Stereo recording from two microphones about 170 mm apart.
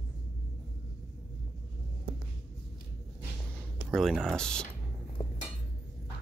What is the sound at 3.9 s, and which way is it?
Speech, centre (ahead or behind).